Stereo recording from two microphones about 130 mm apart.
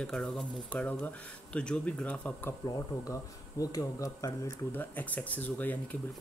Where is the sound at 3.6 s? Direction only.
25° left (ahead or behind).